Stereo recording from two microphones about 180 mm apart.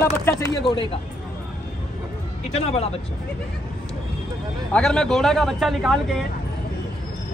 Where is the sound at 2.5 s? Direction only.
35° left (ahead or behind).